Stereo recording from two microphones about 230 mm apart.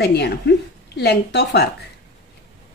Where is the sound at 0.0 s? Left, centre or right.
Left.